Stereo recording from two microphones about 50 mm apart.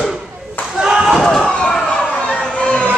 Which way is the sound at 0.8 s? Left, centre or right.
Centre.